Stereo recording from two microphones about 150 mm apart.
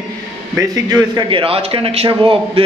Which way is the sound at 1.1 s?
35° right (ahead or behind).